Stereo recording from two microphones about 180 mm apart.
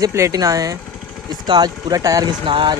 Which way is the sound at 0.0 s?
15° right (ahead or behind).